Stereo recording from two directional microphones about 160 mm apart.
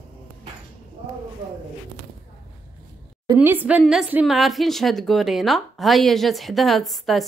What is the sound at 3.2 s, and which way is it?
Speech, 15° right (ahead or behind).